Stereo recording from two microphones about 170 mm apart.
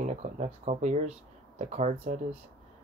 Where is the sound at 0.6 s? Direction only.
40° right (ahead or behind).